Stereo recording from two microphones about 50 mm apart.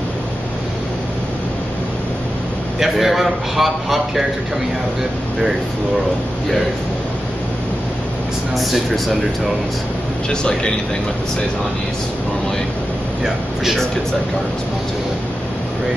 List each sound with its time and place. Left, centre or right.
2.8 s a man's voice: centre
8.5 s a man's voice: centre
10.3 s speech: centre